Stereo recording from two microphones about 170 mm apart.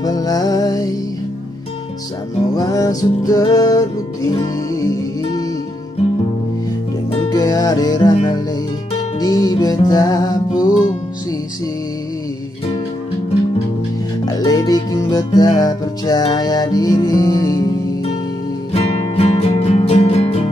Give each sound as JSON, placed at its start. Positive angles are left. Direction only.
{"t": 0.0, "sound": "music", "side_deg": 20}
{"t": 2.5, "sound": "music", "side_deg": 20}
{"t": 7.2, "sound": "music", "side_deg": 20}
{"t": 14.2, "sound": "music", "side_deg": 25}
{"t": 18.7, "sound": "music", "side_deg": 35}